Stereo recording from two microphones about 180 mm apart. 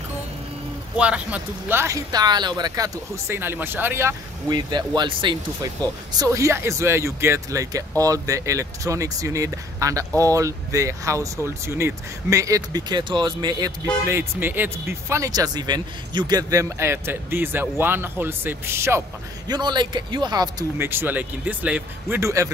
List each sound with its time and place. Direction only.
0.9 s speech: 5° right (ahead or behind); by 13.7 s 20° right (ahead or behind)
14.0 s speech: 10° right (ahead or behind)
20.7 s speech: 10° right (ahead or behind)